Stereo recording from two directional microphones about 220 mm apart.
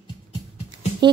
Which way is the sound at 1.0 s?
20° right (ahead or behind).